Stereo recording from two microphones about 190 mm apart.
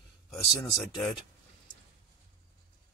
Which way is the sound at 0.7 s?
Centre (ahead or behind).